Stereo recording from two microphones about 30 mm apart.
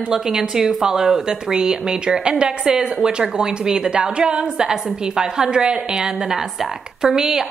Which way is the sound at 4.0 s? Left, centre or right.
Right.